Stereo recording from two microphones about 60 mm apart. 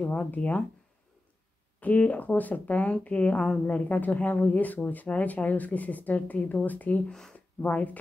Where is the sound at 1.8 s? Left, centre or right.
Left.